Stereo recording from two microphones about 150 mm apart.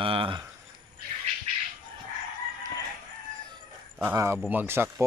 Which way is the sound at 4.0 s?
15° right (ahead or behind).